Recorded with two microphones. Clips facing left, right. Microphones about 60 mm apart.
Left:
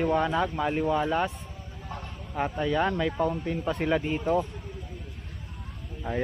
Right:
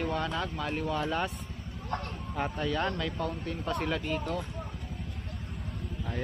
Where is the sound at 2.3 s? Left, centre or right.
Centre.